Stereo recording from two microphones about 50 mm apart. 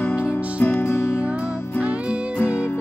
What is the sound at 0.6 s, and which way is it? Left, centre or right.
Music, left.